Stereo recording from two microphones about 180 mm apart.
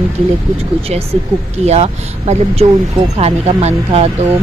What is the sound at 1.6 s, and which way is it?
Speech, 35° right (ahead or behind).